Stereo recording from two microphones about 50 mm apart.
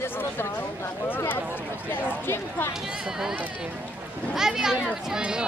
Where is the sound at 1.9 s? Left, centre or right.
Left.